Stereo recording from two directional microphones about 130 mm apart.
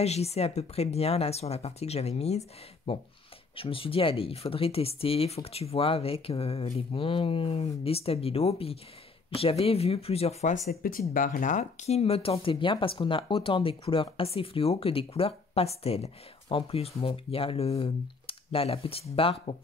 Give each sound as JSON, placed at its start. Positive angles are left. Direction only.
{"t": 0.0, "sound": "speech", "side_deg": 55}
{"t": 10.8, "sound": "speech", "side_deg": 90}